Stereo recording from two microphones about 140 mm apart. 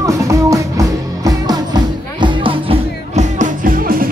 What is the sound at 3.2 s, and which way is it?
Music, 70° right (ahead or behind).